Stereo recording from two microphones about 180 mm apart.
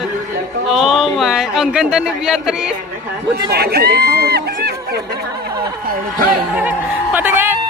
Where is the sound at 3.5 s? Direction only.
60° right (ahead or behind).